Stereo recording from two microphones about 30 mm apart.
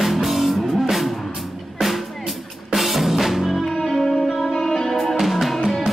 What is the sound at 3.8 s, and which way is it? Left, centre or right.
Music, centre.